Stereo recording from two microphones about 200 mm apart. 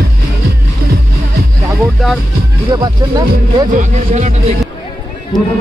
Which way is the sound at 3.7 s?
35° right (ahead or behind).